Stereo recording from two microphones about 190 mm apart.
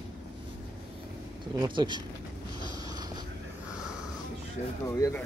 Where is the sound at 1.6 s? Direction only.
25° right (ahead or behind).